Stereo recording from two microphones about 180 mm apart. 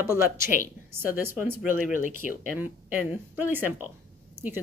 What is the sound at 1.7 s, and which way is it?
Speech, 45° left (ahead or behind).